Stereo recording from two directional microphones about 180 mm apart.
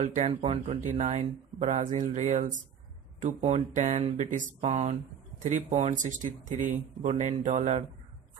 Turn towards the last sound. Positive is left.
turn(degrees=-40)  # may be behind; listen again after turning